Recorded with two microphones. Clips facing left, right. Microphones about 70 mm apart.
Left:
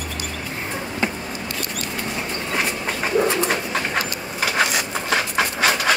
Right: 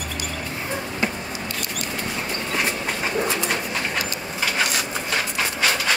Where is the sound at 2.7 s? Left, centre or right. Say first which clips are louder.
Left 1 dB; centre.